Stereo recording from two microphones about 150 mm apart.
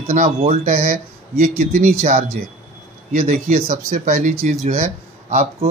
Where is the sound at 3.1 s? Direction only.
60° right (ahead or behind).